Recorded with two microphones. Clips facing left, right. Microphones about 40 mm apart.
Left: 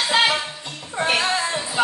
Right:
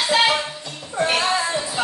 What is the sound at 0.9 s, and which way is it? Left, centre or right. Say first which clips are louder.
Music: even; left.